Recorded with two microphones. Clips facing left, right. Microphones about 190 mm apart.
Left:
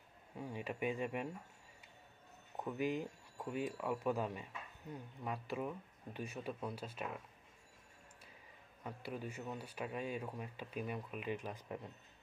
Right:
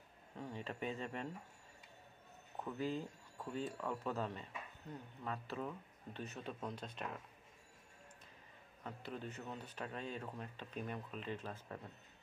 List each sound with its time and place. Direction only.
0.4 s speech: 10° left (ahead or behind)
2.6 s speech: 15° left (ahead or behind)
8.8 s speech: 10° left (ahead or behind)